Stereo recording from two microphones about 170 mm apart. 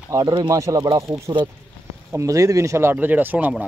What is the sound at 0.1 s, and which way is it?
Speech, 25° right (ahead or behind).